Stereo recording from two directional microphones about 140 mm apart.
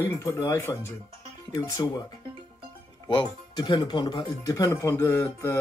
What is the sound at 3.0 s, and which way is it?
Speech, 35° left (ahead or behind).